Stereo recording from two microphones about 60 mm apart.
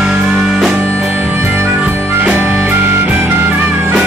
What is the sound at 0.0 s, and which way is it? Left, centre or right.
Music, centre.